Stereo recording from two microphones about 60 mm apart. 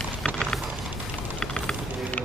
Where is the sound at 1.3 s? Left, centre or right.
Centre.